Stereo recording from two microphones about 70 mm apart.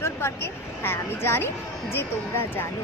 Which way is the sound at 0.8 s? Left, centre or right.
Left.